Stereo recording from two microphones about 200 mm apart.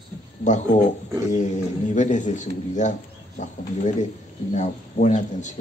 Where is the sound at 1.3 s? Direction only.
35° left (ahead or behind).